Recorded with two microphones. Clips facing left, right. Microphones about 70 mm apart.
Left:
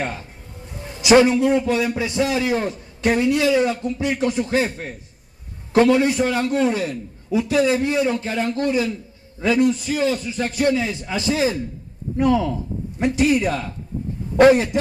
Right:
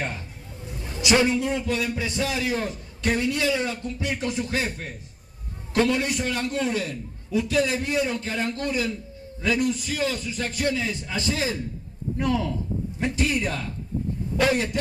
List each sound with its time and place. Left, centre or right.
1.0 s a man's voice: centre